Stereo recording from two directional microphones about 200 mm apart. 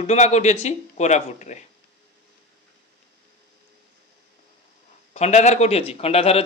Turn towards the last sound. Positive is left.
turn(degrees=30)  # may be behind; listen again after turning